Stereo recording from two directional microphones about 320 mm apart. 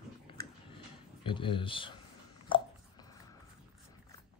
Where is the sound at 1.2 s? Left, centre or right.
Centre.